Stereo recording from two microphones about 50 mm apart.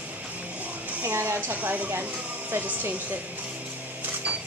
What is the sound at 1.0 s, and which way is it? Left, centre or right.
Music, right.